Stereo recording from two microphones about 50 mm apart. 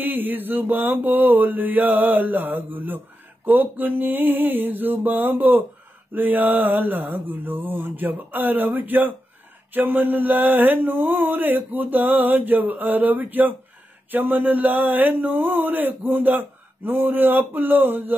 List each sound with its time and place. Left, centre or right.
0.0 s speech: right